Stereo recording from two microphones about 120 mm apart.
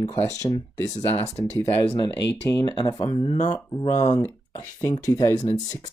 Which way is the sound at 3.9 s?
80° left.